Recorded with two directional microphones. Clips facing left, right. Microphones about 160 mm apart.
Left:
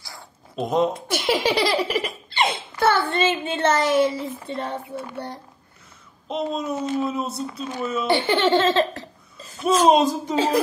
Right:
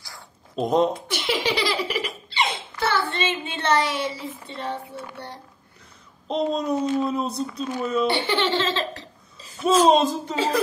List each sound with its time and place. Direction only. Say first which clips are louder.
0.6 s speech: right 1 dB; centre (ahead or behind)
1.1 s laughter: left 4 dB; 45° left (ahead or behind)
6.2 s speech: right 2 dB; 5° left (ahead or behind)
8.1 s speech: left 4 dB; 50° left (ahead or behind)
9.6 s speech: right 1 dB; centre (ahead or behind)
9.8 s speech: left 1 dB; 15° left (ahead or behind)